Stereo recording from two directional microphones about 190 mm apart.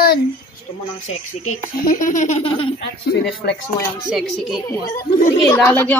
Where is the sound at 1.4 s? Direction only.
40° left (ahead or behind).